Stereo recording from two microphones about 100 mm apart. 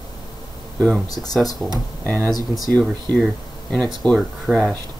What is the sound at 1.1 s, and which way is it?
Speech, 40° left (ahead or behind).